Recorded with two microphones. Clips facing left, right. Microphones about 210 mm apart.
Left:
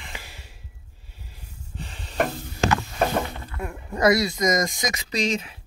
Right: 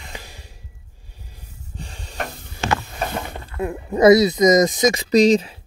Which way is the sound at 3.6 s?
20° right (ahead or behind).